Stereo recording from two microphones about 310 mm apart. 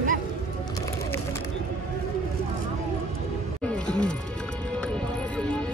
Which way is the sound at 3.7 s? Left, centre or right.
Centre.